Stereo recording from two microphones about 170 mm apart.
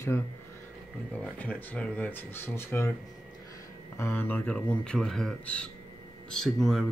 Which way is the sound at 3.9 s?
15° left (ahead or behind).